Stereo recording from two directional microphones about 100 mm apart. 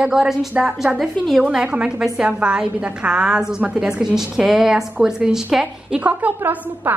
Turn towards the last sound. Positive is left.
turn(degrees=-20)  # may be behind; listen again after turning